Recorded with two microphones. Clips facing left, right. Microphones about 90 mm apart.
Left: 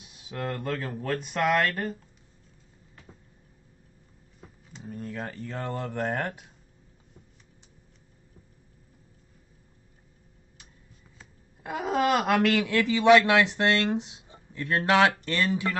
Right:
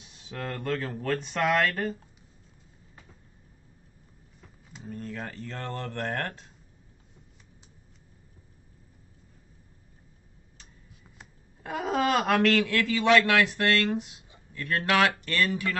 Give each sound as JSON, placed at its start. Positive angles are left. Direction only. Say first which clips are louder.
{"t": 0.0, "sound": "speech", "louder": "left 3 dB", "side_deg": 10}
{"t": 4.8, "sound": "speech", "louder": "left 1 dB", "side_deg": 5}
{"t": 11.6, "sound": "speech", "louder": "left 1 dB", "side_deg": 5}